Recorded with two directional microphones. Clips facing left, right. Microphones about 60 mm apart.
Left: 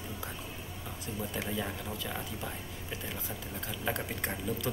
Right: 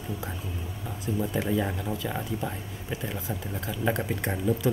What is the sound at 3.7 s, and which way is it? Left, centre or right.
Speech, centre.